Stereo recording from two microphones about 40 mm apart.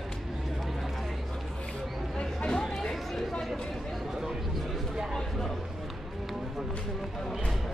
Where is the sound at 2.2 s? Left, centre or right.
Centre.